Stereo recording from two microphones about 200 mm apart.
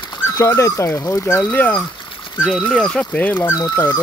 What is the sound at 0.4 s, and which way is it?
Speech, 15° left (ahead or behind).